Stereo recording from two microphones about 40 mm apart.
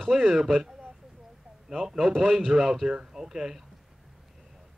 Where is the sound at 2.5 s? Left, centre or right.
Centre.